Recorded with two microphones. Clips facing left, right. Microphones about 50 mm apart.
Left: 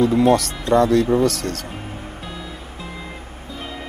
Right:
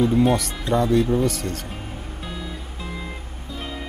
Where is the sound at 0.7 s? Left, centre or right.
Left.